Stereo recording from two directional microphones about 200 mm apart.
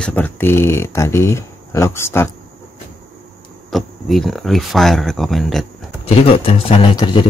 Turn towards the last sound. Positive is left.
turn(degrees=25)  # may be behind; listen again after turning